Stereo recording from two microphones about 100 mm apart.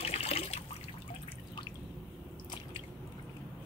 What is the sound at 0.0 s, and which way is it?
Water, 90° left.